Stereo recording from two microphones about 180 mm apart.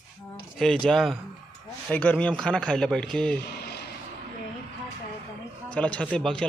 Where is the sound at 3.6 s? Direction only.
65° left (ahead or behind).